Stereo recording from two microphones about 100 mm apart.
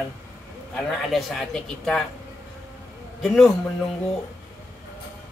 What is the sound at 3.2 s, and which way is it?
Speech, 5° left (ahead or behind).